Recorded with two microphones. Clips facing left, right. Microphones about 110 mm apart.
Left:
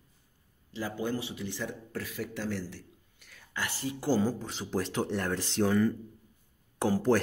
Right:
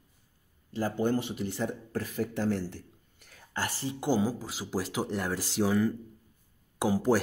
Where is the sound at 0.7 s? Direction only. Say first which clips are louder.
Right 5 dB; 45° right (ahead or behind).